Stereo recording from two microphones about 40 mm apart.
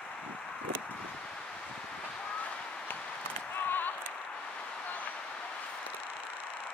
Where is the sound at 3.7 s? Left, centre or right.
Left.